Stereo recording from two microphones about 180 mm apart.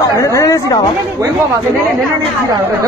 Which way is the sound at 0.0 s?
20° left (ahead or behind).